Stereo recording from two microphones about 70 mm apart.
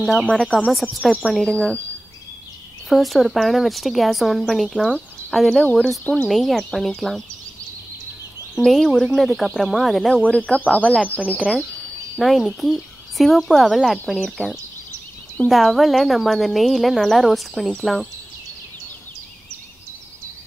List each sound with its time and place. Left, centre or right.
0.0 s speech: centre
0.8 s speech: centre
1.3 s speech: centre
2.9 s speech: centre
8.5 s speech: centre
10.2 s speech: centre
11.5 s speech: centre